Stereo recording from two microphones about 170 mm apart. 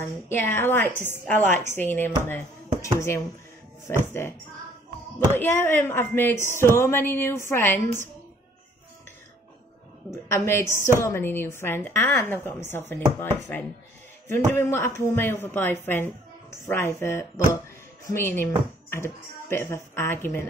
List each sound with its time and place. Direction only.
0.0 s a woman's voice: 15° left (ahead or behind)
5.4 s a woman's voice: 15° left (ahead or behind)
10.1 s a woman's voice: 15° left (ahead or behind)